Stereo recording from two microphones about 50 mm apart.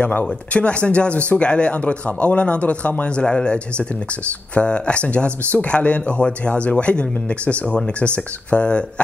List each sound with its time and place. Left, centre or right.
0.0 s speech: left
3.3 s speech: centre